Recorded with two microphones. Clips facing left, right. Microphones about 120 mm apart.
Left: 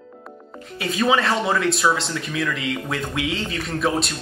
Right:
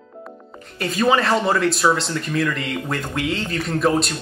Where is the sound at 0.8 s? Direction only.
Centre (ahead or behind).